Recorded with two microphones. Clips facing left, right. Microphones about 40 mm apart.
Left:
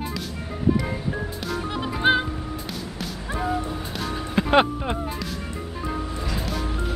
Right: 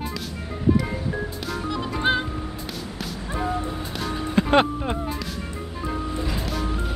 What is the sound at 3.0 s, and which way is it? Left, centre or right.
Music, centre.